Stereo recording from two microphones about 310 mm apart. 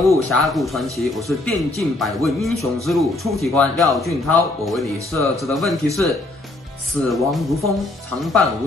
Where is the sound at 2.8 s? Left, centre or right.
Centre.